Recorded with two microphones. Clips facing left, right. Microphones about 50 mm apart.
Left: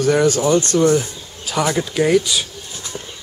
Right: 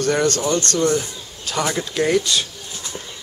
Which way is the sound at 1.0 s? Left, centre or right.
Centre.